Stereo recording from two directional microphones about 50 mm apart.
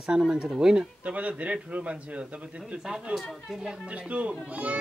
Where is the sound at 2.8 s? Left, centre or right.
Centre.